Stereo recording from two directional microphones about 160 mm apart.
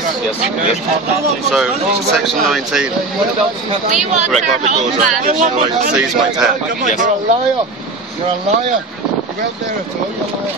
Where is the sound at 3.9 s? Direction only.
50° right (ahead or behind).